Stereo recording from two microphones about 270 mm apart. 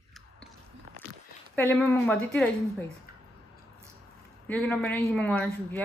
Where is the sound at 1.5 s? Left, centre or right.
Centre.